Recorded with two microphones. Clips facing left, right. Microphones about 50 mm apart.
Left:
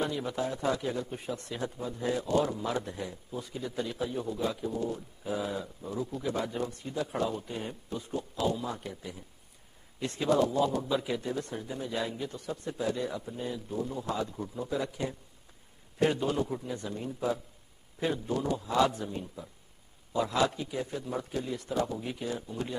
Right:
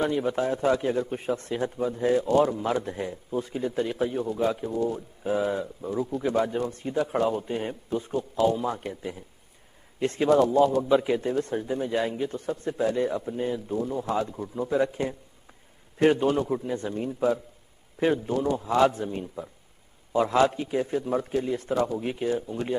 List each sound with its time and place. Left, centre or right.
0.3 s a man's voice: right
16.4 s speech: right
16.7 s a man's voice: right